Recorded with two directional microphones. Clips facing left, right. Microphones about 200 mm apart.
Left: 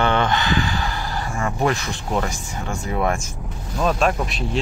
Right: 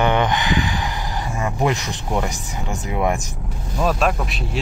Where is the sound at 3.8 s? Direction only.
5° right (ahead or behind).